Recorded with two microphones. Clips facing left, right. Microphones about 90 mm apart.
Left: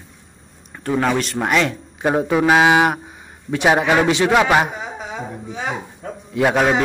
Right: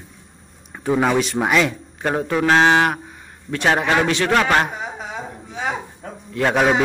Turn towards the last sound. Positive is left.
turn(degrees=0)  # may be behind; listen again after turning